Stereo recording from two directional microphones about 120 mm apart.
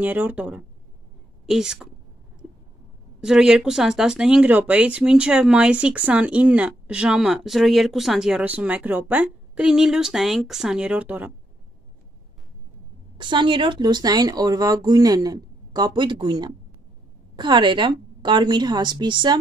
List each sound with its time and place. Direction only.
0.0 s a woman's voice: 15° right (ahead or behind)
3.2 s speech: 5° right (ahead or behind)
13.2 s speech: 40° right (ahead or behind)